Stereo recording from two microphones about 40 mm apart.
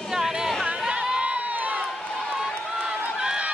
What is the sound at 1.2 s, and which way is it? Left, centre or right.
Crowd, right.